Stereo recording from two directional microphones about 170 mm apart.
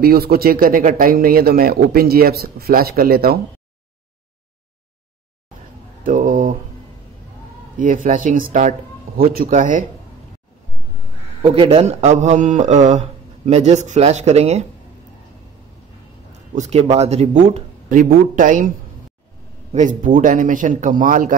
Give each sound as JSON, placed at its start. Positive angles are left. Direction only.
{"t": 0.0, "sound": "speech", "side_deg": -65}
{"t": 6.0, "sound": "speech", "side_deg": -55}
{"t": 7.7, "sound": "speech", "side_deg": -50}
{"t": 11.4, "sound": "speech", "side_deg": -35}
{"t": 16.5, "sound": "speech", "side_deg": -40}
{"t": 19.7, "sound": "speech", "side_deg": -50}